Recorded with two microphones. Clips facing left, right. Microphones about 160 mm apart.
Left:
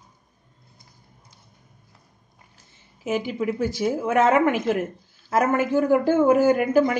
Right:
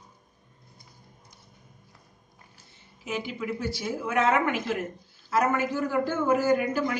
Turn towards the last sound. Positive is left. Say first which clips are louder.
# left 6 dB
turn(degrees=55)  # may be behind; listen again after turning